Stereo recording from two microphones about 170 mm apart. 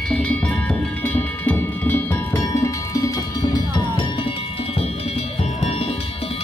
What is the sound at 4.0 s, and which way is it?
Music, 30° left (ahead or behind).